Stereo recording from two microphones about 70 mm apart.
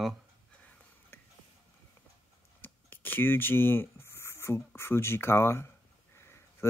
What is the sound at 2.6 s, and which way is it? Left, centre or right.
Speech, left.